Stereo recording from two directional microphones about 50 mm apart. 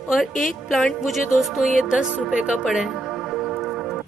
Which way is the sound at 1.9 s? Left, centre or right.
Centre.